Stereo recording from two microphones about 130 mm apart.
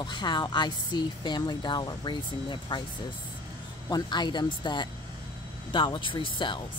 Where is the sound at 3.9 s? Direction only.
35° left (ahead or behind).